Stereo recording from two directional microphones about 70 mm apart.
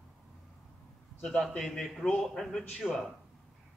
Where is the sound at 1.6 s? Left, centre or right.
Centre.